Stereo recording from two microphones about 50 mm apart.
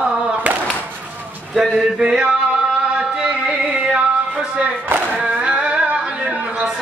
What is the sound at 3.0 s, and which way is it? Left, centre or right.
Music, centre.